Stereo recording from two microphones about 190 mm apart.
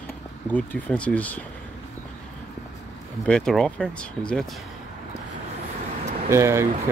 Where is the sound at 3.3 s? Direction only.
Centre (ahead or behind).